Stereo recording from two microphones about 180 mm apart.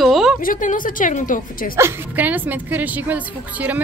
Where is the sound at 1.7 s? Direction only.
15° right (ahead or behind).